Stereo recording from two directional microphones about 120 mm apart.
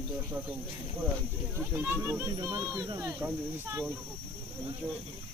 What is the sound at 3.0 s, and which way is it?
Speech, 15° right (ahead or behind).